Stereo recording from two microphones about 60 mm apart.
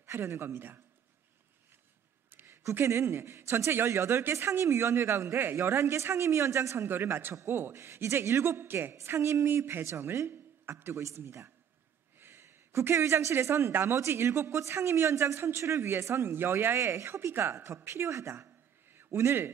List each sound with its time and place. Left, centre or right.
0.0 s speech: right
2.3 s a sound: right
2.7 s speech: right
6.9 s a man's voice: right
11.0 s a woman's voice: right
12.2 s a sound: right
13.7 s a man's voice: right
13.9 s speech: right
18.1 s a woman's voice: right